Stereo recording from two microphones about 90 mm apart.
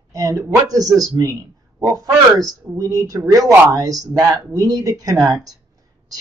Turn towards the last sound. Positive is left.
turn(degrees=-40)  # may be behind; listen again after turning